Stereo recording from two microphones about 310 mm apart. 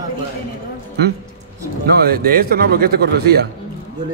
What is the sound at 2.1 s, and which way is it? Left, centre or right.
A man's voice, right.